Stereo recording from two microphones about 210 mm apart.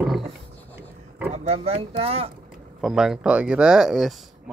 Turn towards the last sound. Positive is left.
turn(degrees=0)  # may be behind; listen again after turning